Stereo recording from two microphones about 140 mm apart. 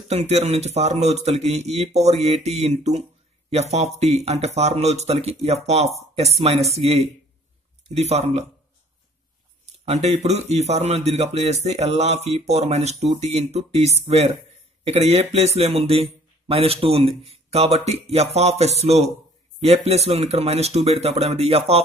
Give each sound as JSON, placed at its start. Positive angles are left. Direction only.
{"t": 0.1, "sound": "a man's voice", "side_deg": -50}
{"t": 9.7, "sound": "a man's voice", "side_deg": -55}